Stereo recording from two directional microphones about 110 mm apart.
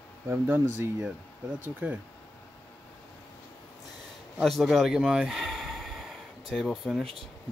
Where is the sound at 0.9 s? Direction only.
10° right (ahead or behind).